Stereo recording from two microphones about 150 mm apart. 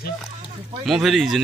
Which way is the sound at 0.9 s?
Centre (ahead or behind).